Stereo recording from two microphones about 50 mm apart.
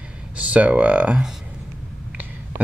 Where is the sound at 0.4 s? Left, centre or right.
Right.